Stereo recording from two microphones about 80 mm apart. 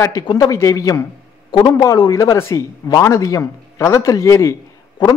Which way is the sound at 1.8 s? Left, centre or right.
Left.